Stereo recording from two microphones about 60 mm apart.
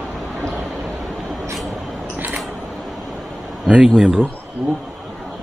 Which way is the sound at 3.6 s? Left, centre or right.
Centre.